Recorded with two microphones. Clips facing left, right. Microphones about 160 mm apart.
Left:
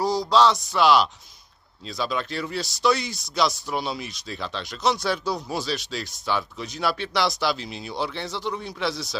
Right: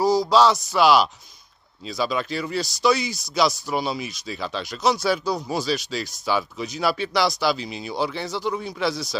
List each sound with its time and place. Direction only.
0.0 s speech: 5° right (ahead or behind)